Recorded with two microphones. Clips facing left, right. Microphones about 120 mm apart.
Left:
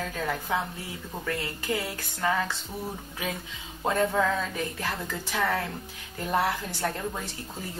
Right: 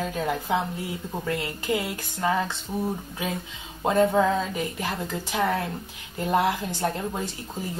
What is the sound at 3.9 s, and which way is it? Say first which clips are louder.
Speech: right 4 dB; 25° right (ahead or behind).